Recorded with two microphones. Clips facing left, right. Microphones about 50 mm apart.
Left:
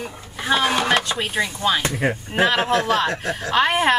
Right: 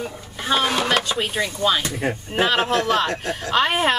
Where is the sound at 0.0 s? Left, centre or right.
Centre.